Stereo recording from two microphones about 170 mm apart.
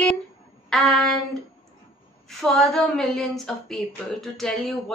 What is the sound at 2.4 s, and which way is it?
Speech, centre (ahead or behind).